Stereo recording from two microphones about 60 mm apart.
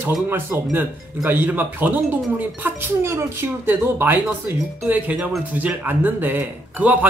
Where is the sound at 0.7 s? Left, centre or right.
Right.